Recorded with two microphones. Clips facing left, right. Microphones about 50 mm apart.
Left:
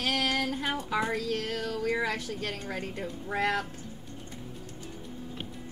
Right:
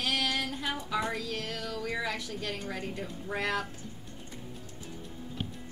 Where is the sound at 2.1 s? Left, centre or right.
Left.